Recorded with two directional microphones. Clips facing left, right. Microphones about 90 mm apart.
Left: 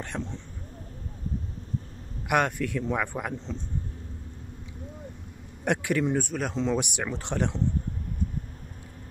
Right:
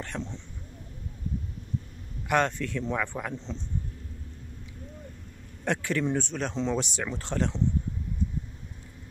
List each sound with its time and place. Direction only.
0.0 s speech: 15° left (ahead or behind)
2.2 s speech: 10° left (ahead or behind)
5.6 s speech: 15° left (ahead or behind)
6.8 s speech: 15° left (ahead or behind)
8.2 s vehicle: 50° left (ahead or behind)